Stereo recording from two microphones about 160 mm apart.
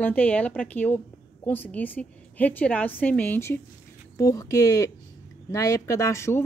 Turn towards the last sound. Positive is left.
turn(degrees=15)  # may be behind; listen again after turning